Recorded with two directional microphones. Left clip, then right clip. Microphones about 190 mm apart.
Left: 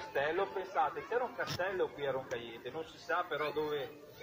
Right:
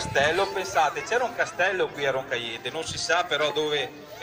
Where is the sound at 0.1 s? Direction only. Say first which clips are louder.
Right 11 dB; 20° left (ahead or behind).